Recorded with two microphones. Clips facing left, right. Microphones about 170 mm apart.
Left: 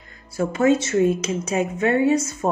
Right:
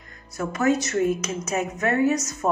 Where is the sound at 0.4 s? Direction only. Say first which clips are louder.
Left 4 dB; 30° left (ahead or behind).